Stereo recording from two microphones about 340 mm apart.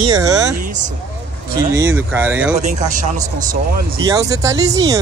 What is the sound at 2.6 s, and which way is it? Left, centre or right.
Speech, right.